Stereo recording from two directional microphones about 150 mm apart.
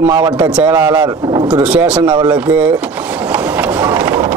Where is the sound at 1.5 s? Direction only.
5° right (ahead or behind).